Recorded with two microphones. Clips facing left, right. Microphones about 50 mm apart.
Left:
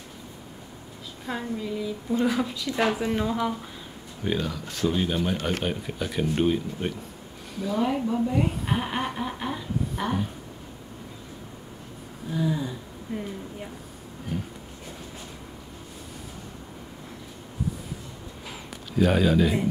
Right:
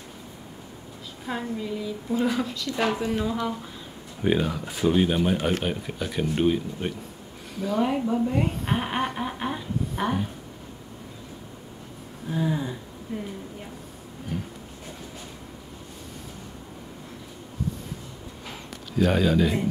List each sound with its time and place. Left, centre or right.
1.2 s a woman's voice: centre
4.2 s speech: centre
5.6 s a woman's voice: centre
8.7 s speech: centre
9.1 s a sound: centre
12.3 s a sound: right
13.1 s a woman's voice: centre
18.9 s a woman's voice: centre